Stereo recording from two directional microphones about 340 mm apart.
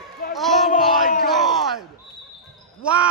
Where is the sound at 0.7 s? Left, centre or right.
Left.